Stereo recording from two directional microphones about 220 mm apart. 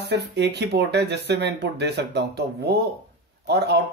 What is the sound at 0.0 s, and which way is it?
Speech, 50° right (ahead or behind).